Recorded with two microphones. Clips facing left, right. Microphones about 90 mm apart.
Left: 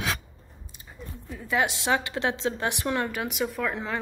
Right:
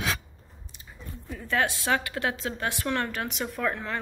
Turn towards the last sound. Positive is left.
turn(degrees=15)  # may be behind; listen again after turning